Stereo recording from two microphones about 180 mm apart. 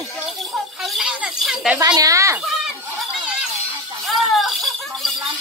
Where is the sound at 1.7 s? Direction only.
20° right (ahead or behind).